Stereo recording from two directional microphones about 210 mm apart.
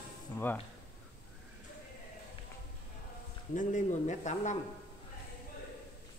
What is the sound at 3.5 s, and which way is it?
Speech, 35° left (ahead or behind).